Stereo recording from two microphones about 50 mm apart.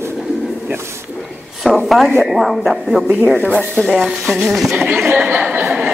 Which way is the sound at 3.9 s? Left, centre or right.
Centre.